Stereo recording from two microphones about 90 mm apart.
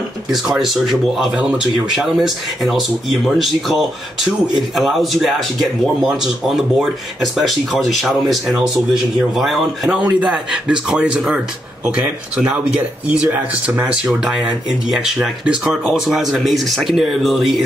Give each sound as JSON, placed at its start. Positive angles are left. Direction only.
{"t": 0.3, "sound": "speech", "side_deg": -5}